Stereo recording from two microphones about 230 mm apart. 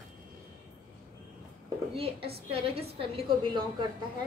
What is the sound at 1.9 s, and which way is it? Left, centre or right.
A woman's voice, right.